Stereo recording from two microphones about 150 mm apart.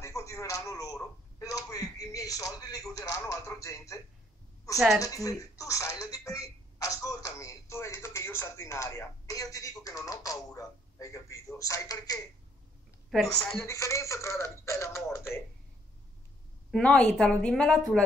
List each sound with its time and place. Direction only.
0.0 s a man's voice: 20° left (ahead or behind)
4.7 s a woman's voice: centre (ahead or behind)
5.0 s speech: 20° left (ahead or behind)
13.1 s a woman's voice: centre (ahead or behind)
13.6 s speech: 20° left (ahead or behind)
16.7 s speech: 5° left (ahead or behind)